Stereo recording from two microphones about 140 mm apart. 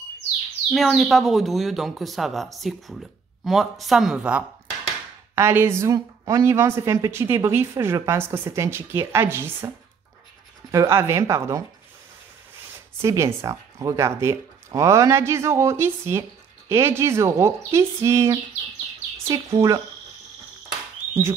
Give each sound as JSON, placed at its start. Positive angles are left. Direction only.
{"t": 0.7, "sound": "speech", "side_deg": 0}
{"t": 10.7, "sound": "speech", "side_deg": -20}
{"t": 13.0, "sound": "speech", "side_deg": -20}